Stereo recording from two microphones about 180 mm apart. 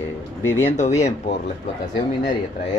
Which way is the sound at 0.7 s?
40° left (ahead or behind).